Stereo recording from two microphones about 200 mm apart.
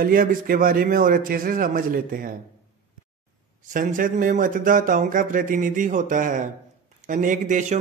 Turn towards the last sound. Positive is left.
turn(degrees=-40)  # may be behind; listen again after turning